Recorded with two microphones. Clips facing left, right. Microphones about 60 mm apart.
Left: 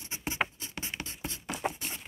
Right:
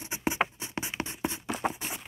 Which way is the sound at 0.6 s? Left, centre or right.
Centre.